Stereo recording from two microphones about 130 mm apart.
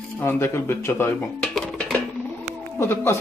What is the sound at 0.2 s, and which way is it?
Speech, 20° left (ahead or behind).